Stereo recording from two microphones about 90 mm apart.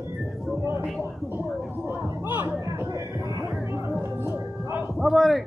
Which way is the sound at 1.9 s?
25° right (ahead or behind).